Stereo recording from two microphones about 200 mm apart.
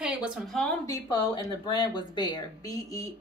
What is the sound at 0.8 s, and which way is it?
Speech, 25° left (ahead or behind).